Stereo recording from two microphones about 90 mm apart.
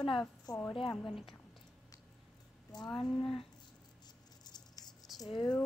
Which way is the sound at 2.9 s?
5° left (ahead or behind).